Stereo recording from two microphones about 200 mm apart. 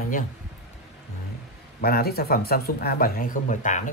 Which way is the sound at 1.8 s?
50° left (ahead or behind).